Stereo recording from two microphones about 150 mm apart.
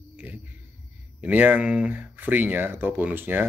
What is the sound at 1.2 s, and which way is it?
Speech, 10° right (ahead or behind).